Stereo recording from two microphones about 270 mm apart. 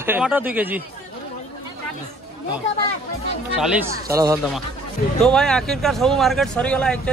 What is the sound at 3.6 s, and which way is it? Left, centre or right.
Speech, centre.